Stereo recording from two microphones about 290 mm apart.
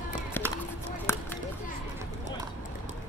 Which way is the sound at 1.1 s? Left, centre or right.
Centre.